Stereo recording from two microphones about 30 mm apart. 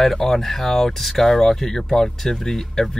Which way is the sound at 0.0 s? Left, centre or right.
Centre.